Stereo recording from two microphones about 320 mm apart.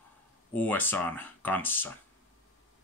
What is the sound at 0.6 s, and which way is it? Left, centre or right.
Speech, centre.